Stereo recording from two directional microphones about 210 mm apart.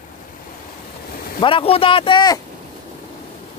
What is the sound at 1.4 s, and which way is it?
Speech, 25° left (ahead or behind).